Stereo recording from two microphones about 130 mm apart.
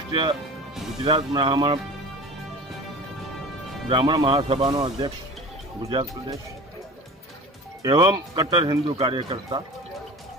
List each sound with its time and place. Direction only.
0.1 s speech: 40° right (ahead or behind)
3.9 s speech: 40° right (ahead or behind)
7.8 s speech: 35° right (ahead or behind)